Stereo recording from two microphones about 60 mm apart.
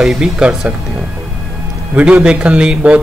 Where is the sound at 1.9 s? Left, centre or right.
Centre.